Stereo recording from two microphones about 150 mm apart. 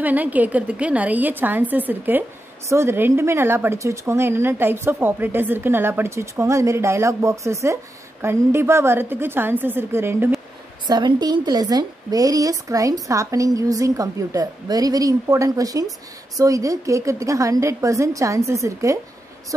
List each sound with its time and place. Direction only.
0.0 s a woman's voice: 10° right (ahead or behind)
10.9 s a woman's voice: 30° right (ahead or behind)